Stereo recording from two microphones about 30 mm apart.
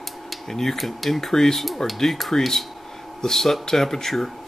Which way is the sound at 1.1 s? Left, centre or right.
Centre.